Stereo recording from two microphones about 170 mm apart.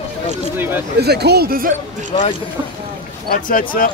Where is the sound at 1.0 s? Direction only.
75° right (ahead or behind).